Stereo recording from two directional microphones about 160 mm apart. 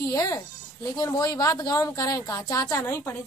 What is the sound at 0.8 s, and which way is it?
A woman's voice, 25° left (ahead or behind).